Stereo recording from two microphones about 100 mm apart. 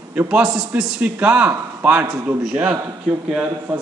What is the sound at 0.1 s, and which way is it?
A man's voice, 15° right (ahead or behind).